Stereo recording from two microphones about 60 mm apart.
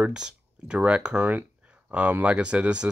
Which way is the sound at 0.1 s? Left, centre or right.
Centre.